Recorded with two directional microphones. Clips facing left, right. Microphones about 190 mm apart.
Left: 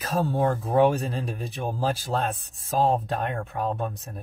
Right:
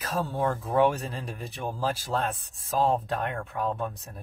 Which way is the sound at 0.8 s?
20° left (ahead or behind).